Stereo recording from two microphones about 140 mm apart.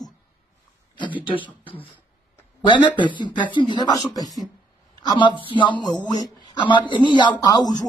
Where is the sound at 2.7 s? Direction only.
35° left (ahead or behind).